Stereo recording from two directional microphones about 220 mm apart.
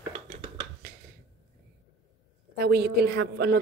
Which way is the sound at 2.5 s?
45° right (ahead or behind).